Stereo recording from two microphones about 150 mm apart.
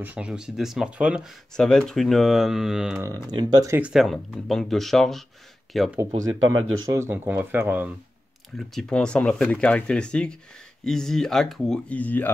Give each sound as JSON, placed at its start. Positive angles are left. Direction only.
{"t": 0.0, "sound": "speech", "side_deg": -10}
{"t": 1.6, "sound": "speech", "side_deg": 5}
{"t": 3.0, "sound": "speech", "side_deg": -25}
{"t": 3.7, "sound": "speech", "side_deg": -5}
{"t": 6.9, "sound": "speech", "side_deg": -15}
{"t": 8.5, "sound": "speech", "side_deg": 5}